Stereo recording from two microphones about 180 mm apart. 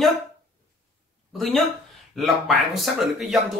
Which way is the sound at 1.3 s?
Centre (ahead or behind).